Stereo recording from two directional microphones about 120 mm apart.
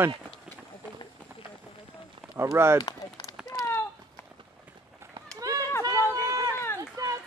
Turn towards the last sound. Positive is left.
turn(degrees=-25)  # may be behind; listen again after turning